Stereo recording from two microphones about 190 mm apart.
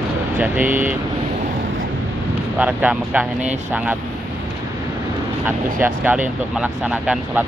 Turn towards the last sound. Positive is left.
turn(degrees=-5)  # may be behind; listen again after turning